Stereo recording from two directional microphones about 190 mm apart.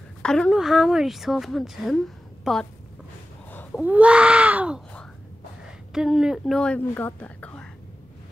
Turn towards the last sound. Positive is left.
turn(degrees=5)  # may be behind; listen again after turning